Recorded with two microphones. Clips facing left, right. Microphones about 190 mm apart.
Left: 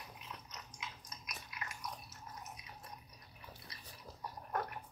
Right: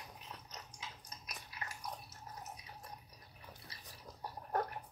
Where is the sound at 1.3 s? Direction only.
30° right (ahead or behind).